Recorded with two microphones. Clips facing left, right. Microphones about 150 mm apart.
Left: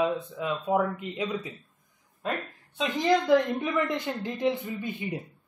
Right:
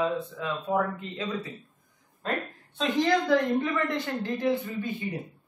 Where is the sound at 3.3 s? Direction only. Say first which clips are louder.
Left 1 dB; 15° left (ahead or behind).